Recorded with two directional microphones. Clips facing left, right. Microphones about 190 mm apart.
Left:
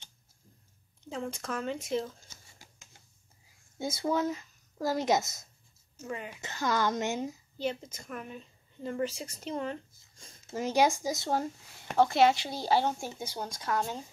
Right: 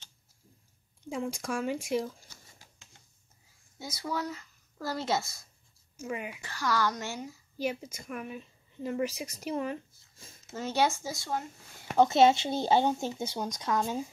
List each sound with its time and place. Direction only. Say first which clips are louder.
1.0 s speech: right 2 dB; 10° right (ahead or behind)
3.7 s speech: left 5 dB; 25° left (ahead or behind)
5.9 s speech: right 2 dB; 10° right (ahead or behind)
6.4 s a woman's voice: left 1 dB; 20° left (ahead or behind)
7.5 s a woman's voice: right 3 dB; 10° right (ahead or behind)
10.5 s speech: left 2 dB; 15° left (ahead or behind)
12.0 s speech: right 2 dB; 25° right (ahead or behind)